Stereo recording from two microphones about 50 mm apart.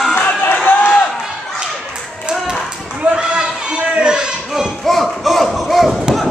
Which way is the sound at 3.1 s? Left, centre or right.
Centre.